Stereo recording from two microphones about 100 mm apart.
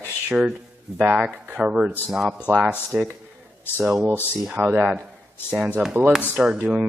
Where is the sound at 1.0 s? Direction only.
10° right (ahead or behind).